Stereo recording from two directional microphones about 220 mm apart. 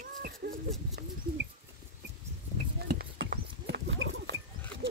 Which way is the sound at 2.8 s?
45° right (ahead or behind).